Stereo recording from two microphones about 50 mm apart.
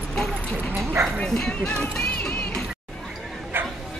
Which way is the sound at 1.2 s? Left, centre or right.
Centre.